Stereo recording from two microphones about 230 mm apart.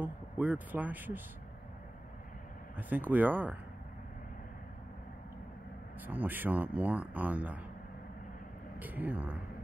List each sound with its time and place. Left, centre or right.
0.0 s speech: centre
2.9 s speech: centre
6.0 s speech: centre
8.7 s speech: centre